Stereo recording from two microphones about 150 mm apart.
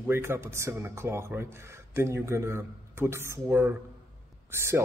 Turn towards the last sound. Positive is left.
turn(degrees=-15)  # may be behind; listen again after turning